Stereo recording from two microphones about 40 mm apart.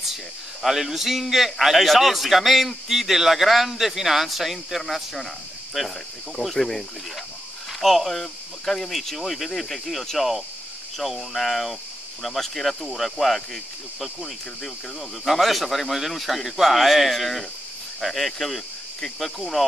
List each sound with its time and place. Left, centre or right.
0.6 s a man's voice: centre
7.8 s a man's voice: centre